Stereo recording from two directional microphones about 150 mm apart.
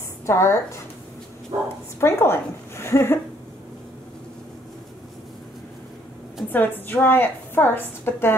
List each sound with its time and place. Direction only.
0.3 s a woman's voice: 15° left (ahead or behind)
1.5 s speech: 30° right (ahead or behind)
2.0 s a woman's voice: 15° left (ahead or behind)
6.5 s a woman's voice: 15° left (ahead or behind)